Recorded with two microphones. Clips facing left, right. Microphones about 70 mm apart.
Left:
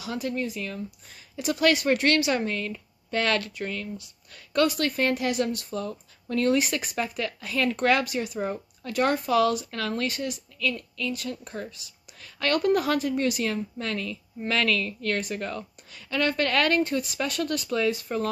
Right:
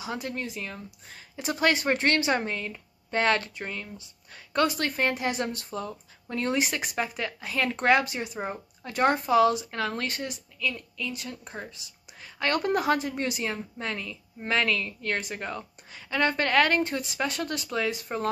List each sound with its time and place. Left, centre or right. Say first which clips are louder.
0.0 s speech: left 3 dB; right